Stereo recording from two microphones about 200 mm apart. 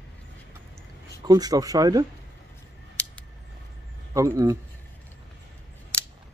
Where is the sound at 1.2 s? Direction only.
20° right (ahead or behind).